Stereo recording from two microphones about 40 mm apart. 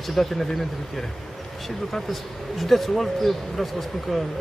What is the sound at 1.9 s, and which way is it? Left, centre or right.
Speech, centre.